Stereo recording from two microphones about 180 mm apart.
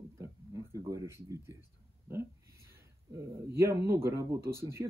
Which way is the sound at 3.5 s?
15° right (ahead or behind).